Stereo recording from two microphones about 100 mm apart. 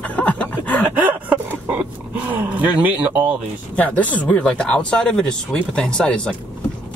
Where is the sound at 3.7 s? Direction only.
15° left (ahead or behind).